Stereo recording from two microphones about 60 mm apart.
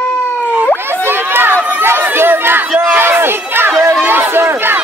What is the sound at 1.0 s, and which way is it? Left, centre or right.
Run, right.